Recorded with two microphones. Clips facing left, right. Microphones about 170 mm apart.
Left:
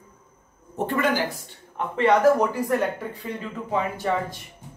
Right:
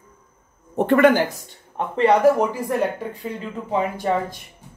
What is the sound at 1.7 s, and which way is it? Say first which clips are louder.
Speech: right 3 dB; 35° right (ahead or behind).